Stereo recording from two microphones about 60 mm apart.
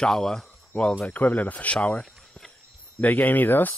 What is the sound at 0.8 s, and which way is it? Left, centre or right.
Speech, left.